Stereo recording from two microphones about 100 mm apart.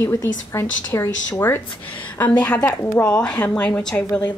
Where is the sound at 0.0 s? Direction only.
25° left (ahead or behind).